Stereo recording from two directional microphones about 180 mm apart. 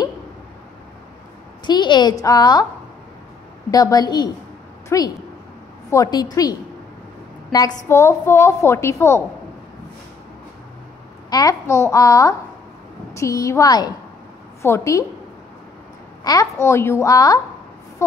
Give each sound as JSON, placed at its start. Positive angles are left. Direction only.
{"t": 1.7, "sound": "a woman's voice", "side_deg": 25}
{"t": 3.7, "sound": "a woman's voice", "side_deg": 20}
{"t": 7.9, "sound": "a child's voice", "side_deg": 15}
{"t": 11.2, "sound": "a child's voice", "side_deg": 20}
{"t": 16.3, "sound": "a child's voice", "side_deg": 15}